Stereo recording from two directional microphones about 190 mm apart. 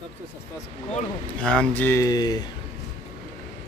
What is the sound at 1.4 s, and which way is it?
Speech, 5° left (ahead or behind).